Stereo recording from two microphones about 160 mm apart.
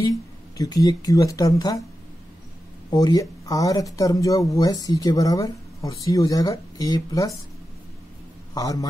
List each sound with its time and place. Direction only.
0.6 s speech: 25° left (ahead or behind)
2.9 s speech: 25° left (ahead or behind)
8.5 s speech: 20° left (ahead or behind)